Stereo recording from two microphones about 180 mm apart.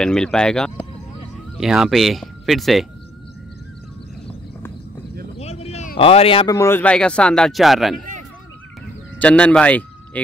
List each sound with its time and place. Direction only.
0.0 s speech: 5° left (ahead or behind)
5.4 s a sound: 35° left (ahead or behind)
5.9 s speech: 30° left (ahead or behind)
6.5 s speech: 15° left (ahead or behind)
9.2 s speech: 5° left (ahead or behind)